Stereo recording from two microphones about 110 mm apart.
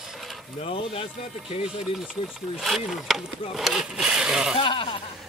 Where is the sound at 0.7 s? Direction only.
55° left (ahead or behind).